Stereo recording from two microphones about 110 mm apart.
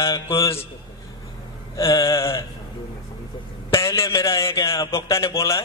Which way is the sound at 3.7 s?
25° left (ahead or behind).